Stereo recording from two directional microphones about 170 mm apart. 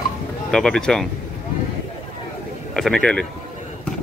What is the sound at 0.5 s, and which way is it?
Speech, 5° left (ahead or behind).